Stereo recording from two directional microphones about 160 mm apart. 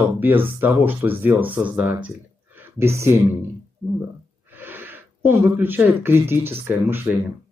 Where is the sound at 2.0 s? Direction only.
10° right (ahead or behind).